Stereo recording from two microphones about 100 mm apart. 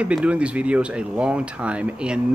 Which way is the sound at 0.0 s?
10° right (ahead or behind).